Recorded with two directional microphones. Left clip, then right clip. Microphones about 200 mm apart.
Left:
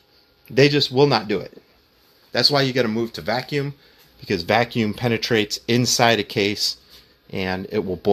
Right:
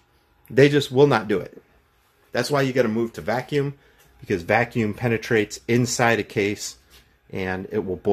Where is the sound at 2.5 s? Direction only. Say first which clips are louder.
Left 1 dB; 15° left (ahead or behind).